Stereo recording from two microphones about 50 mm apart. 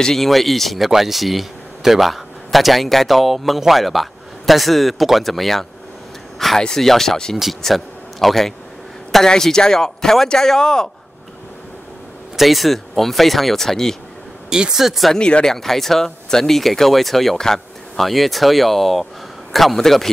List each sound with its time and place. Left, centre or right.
0.0 s a man's voice: centre
12.4 s speech: centre
14.5 s speech: centre
15.1 s speech: centre
15.5 s speech: centre